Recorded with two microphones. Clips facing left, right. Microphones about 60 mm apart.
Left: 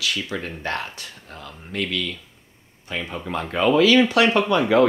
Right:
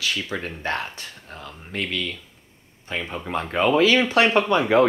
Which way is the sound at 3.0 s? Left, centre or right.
Centre.